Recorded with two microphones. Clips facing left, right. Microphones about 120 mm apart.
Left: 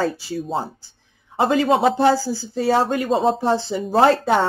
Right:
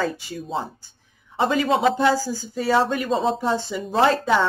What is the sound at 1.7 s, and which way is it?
Speech, 35° left (ahead or behind).